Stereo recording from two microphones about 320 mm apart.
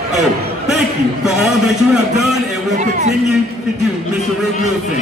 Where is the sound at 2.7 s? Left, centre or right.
Right.